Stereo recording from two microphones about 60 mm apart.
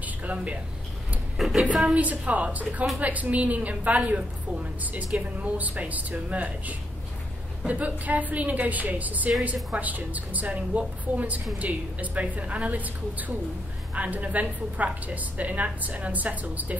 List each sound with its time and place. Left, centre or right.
0.0 s a sound: right
1.3 s speech: centre
2.0 s a woman's voice: right